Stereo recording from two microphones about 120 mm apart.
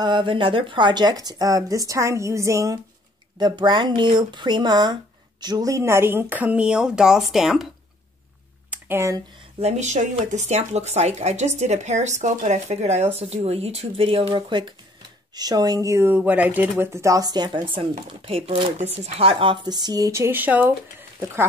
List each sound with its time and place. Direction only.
0.0 s speech: 40° right (ahead or behind)
3.3 s speech: 40° right (ahead or behind); by 7.6 s centre (ahead or behind)
8.6 s a sound: 20° right (ahead or behind)
9.6 s speech: 70° right (ahead or behind); by 17.6 s 35° right (ahead or behind)
17.6 s speech: 50° right (ahead or behind); by 20.6 s 15° right (ahead or behind)